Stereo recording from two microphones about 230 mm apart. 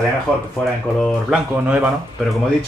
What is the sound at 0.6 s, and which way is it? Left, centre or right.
Speech, centre.